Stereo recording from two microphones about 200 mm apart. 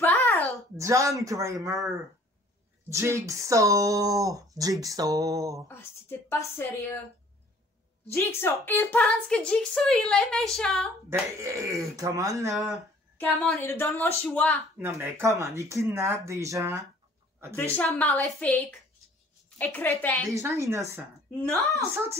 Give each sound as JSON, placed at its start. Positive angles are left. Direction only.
{"t": 0.0, "sound": "a sound", "side_deg": 10}
{"t": 0.7, "sound": "speech", "side_deg": -15}
{"t": 2.9, "sound": "speech", "side_deg": -15}
{"t": 5.7, "sound": "a woman's voice", "side_deg": 10}
{"t": 8.1, "sound": "a woman's voice", "side_deg": 15}
{"t": 11.1, "sound": "speech", "side_deg": -15}
{"t": 13.4, "sound": "a woman's voice", "side_deg": 10}
{"t": 14.8, "sound": "speech", "side_deg": -10}
{"t": 17.6, "sound": "a woman's voice", "side_deg": 10}
{"t": 20.3, "sound": "speech", "side_deg": -15}